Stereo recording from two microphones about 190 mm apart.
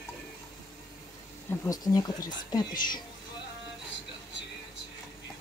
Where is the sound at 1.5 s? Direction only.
20° left (ahead or behind).